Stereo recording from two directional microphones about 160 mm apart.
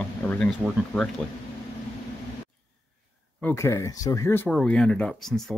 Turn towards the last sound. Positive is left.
turn(degrees=5)  # may be behind; listen again after turning